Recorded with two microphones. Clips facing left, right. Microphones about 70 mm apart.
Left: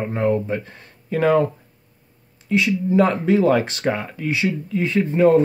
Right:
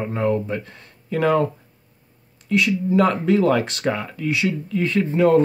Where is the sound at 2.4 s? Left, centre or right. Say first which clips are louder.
Even; left.